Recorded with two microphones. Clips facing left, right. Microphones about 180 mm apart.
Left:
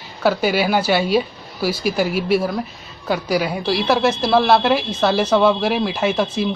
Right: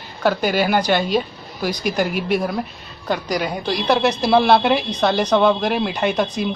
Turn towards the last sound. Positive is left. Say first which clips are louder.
# left 1 dB
turn(degrees=0)  # may be behind; listen again after turning